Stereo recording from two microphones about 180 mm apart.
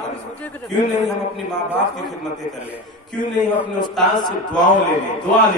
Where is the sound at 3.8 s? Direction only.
25° left (ahead or behind).